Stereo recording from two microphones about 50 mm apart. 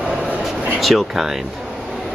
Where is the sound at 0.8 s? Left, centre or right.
Centre.